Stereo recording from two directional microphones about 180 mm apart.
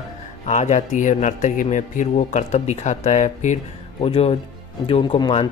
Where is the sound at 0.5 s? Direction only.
40° left (ahead or behind).